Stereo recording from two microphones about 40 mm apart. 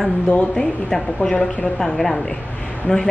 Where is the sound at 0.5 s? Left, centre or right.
Centre.